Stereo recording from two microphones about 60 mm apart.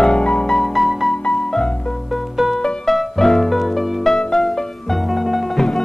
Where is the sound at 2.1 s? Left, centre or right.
Centre.